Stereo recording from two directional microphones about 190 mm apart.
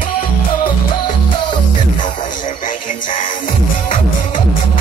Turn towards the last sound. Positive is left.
turn(degrees=45)  # may be behind; listen again after turning